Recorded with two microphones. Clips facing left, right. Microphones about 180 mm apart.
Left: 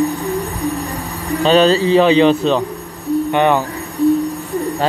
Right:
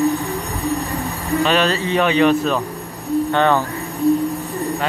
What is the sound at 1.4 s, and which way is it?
Speech, 30° left (ahead or behind).